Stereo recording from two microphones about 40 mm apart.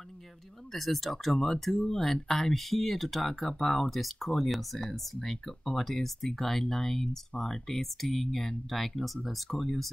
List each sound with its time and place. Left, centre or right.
0.7 s speech: centre